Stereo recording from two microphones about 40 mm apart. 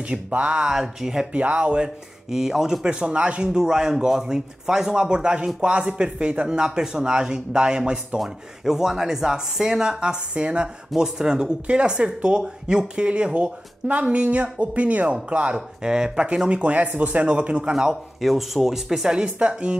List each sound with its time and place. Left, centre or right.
0.4 s speech: right
0.7 s speech: centre
1.3 s speech: right
2.3 s speech: centre
2.9 s speech: right
3.4 s speech: centre
8.2 s speech: centre
13.0 s speech: right
15.5 s speech: centre
18.2 s speech: centre
19.3 s speech: right